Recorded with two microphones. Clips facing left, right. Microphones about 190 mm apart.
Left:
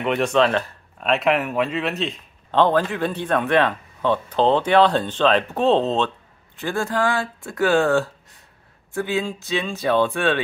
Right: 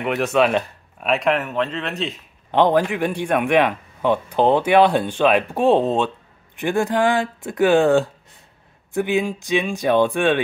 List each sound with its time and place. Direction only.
0.0 s speech: 5° right (ahead or behind)
1.0 s speech: centre (ahead or behind)
2.5 s a man's voice: 15° right (ahead or behind)